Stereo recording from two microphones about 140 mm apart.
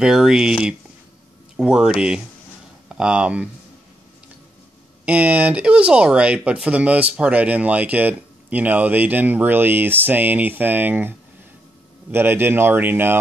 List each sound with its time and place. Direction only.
0.0 s speech: 5° right (ahead or behind)
5.0 s speech: 10° right (ahead or behind)